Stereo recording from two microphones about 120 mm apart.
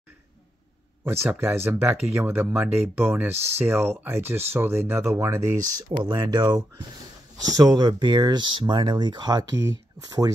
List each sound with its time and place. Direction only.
1.0 s speech: 20° right (ahead or behind)
5.8 s speech: 40° right (ahead or behind)